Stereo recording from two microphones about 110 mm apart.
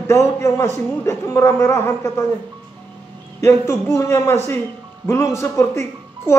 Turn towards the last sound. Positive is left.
turn(degrees=25)  # may be behind; listen again after turning